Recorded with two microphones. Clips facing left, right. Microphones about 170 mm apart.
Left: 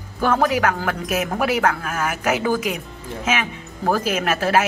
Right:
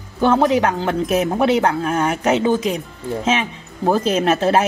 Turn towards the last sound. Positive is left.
turn(degrees=-30)  # may be behind; listen again after turning